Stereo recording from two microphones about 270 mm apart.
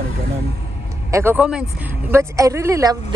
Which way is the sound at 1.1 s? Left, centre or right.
Centre.